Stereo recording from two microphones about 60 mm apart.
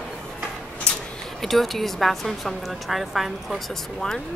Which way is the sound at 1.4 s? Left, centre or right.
Centre.